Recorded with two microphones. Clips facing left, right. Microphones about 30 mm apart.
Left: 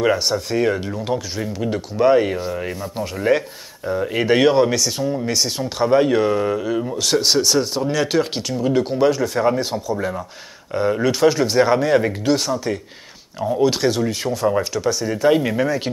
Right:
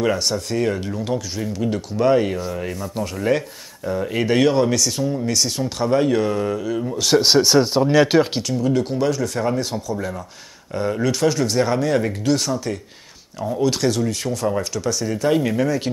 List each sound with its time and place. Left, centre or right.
0.0 s speech: centre
7.2 s speech: centre
8.4 s speech: centre